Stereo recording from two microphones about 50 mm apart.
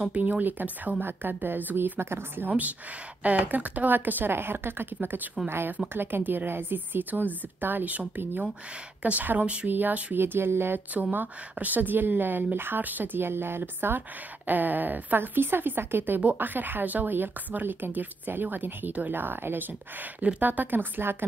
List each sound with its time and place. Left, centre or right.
0.1 s a woman's voice: right
1.0 s a woman's voice: right
2.0 s speech: right
3.3 s a woman's voice: right
9.0 s a woman's voice: right
9.4 s speech: right
9.7 s a woman's voice: right
10.1 s speech: right
11.0 s a woman's voice: right
20.2 s a woman's voice: right